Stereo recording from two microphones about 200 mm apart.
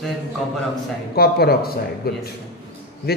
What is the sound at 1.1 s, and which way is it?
A man's voice, 50° left (ahead or behind).